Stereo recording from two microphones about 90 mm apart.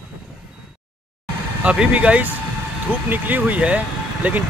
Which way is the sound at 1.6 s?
15° right (ahead or behind).